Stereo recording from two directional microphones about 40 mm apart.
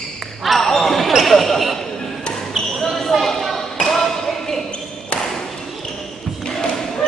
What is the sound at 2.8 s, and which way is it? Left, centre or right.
Basketball bounce, centre.